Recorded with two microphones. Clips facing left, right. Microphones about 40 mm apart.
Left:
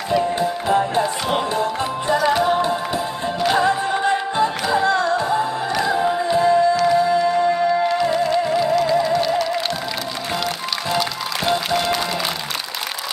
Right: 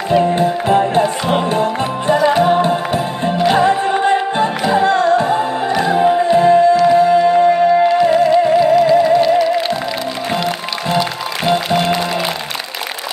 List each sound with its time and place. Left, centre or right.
0.2 s music: right
2.1 s music: right
3.4 s music: right
8.8 s music: centre